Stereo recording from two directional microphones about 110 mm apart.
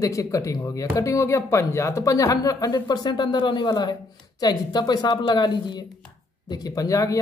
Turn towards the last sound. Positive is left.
turn(degrees=30)  # may be behind; listen again after turning